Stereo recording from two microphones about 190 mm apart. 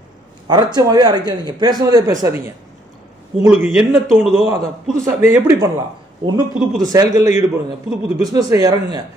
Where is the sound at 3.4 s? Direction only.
15° right (ahead or behind).